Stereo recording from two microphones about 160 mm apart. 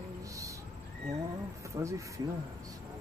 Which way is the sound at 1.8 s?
25° right (ahead or behind).